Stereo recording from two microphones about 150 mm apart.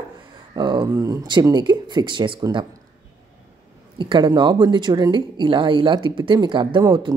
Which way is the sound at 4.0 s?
30° right (ahead or behind).